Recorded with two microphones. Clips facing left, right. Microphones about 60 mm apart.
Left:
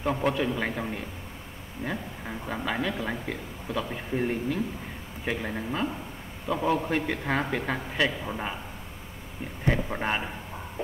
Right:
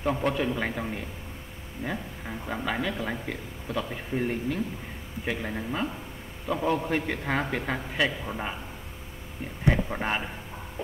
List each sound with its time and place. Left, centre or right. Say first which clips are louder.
0.0 s speech: even; centre
9.7 s speech: right 1 dB; centre